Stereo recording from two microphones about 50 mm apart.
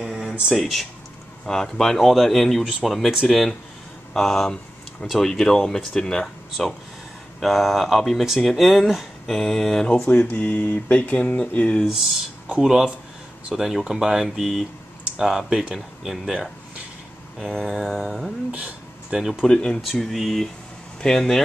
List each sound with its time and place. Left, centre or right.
0.0 s a sound: centre
0.6 s speech: centre
1.4 s speech: centre
10.0 s speech: left
12.6 s speech: centre
18.5 s a sound: right
19.1 s speech: centre
19.4 s speech: centre
19.8 s speech: centre
21.0 s speech: centre